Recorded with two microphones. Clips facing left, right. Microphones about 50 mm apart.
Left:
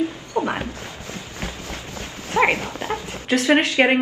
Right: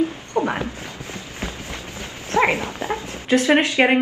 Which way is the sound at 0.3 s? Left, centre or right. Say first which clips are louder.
Right 1 dB; right.